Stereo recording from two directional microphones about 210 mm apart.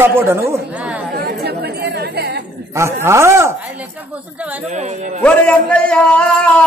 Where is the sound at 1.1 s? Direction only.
50° right (ahead or behind).